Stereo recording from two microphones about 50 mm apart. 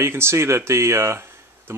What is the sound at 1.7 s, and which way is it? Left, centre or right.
Speech, right.